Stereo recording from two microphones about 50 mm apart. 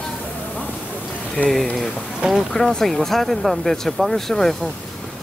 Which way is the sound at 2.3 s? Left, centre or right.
Centre.